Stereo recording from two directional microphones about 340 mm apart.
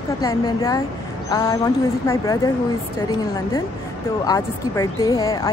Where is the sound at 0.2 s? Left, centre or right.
Centre.